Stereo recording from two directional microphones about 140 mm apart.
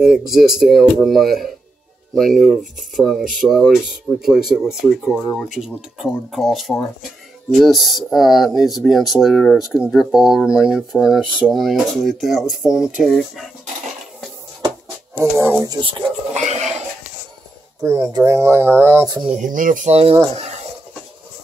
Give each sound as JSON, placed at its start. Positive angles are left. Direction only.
{"t": 0.0, "sound": "speech", "side_deg": -5}
{"t": 2.3, "sound": "speech", "side_deg": 0}
{"t": 15.1, "sound": "speech", "side_deg": -20}
{"t": 16.3, "sound": "a sound", "side_deg": -55}
{"t": 17.8, "sound": "speech", "side_deg": -20}
{"t": 19.2, "sound": "speech", "side_deg": -60}
{"t": 19.9, "sound": "speech", "side_deg": -45}